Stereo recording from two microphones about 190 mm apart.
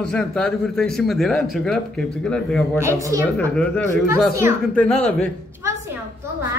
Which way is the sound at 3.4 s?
10° left (ahead or behind).